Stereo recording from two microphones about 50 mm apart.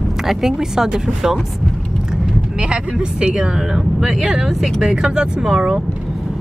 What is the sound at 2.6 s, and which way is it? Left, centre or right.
Speech, centre.